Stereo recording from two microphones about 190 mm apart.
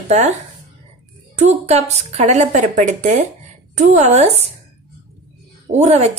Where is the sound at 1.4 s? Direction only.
35° right (ahead or behind).